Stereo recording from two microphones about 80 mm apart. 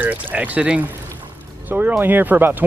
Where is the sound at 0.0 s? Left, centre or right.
Centre.